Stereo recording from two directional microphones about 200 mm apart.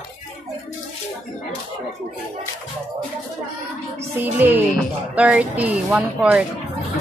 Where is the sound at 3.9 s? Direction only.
10° right (ahead or behind).